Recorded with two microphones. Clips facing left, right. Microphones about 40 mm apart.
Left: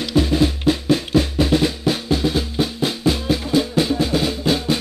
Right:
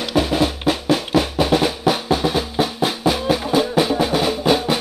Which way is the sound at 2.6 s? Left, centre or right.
Centre.